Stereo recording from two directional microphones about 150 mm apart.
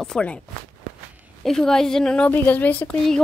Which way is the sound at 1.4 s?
5° left (ahead or behind).